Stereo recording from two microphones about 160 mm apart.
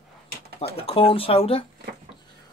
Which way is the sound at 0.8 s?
35° left (ahead or behind).